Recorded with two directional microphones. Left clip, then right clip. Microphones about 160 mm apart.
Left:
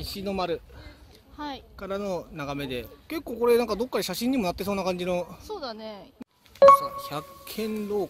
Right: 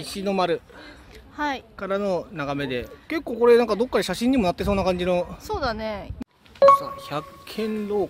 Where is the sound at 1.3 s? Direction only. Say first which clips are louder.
Right 9 dB; 40° right (ahead or behind).